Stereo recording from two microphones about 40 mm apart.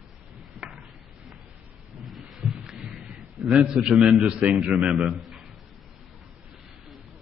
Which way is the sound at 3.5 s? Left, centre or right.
Centre.